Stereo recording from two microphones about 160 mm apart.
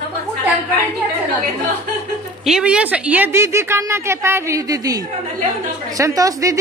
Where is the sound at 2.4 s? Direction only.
5° right (ahead or behind).